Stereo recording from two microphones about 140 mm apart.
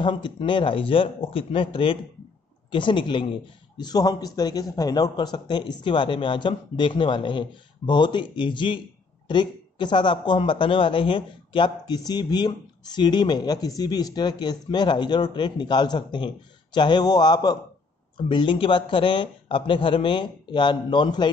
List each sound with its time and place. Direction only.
0.0 s a man's voice: 35° left (ahead or behind)